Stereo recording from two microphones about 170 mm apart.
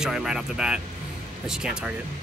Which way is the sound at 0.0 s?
5° right (ahead or behind).